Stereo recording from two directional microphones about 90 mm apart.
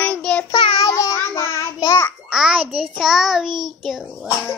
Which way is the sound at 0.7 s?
40° left (ahead or behind).